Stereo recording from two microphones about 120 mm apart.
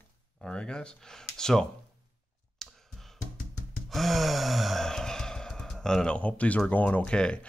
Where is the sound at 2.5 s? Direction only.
5° left (ahead or behind).